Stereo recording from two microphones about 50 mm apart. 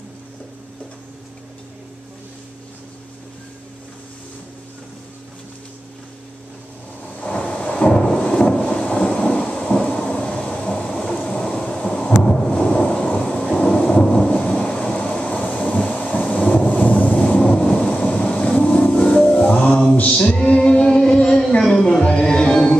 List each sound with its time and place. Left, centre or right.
7.2 s thunder: left
10.1 s vehicle: left
11.5 s thunder: left
17.2 s vehicle: centre
17.6 s thunder: left
18.8 s music: centre